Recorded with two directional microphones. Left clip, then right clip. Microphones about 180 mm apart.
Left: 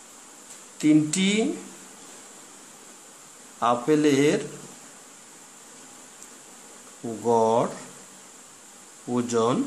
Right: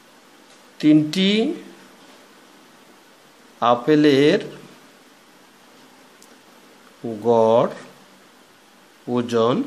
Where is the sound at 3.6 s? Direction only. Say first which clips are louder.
Right 5 dB; 25° right (ahead or behind).